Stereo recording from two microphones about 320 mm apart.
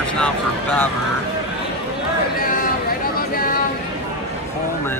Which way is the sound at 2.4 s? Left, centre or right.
Left.